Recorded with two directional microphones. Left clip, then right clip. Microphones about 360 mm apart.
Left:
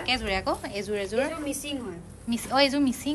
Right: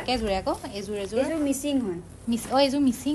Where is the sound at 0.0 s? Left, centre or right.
Centre.